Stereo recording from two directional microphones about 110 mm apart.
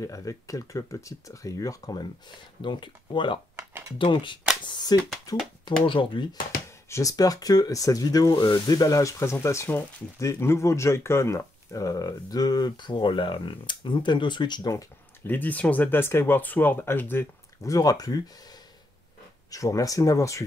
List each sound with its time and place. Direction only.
0.0 s speech: 30° left (ahead or behind)
5.9 s speech: 50° left (ahead or behind)
6.9 s speech: 30° left (ahead or behind)
15.2 s speech: 15° left (ahead or behind)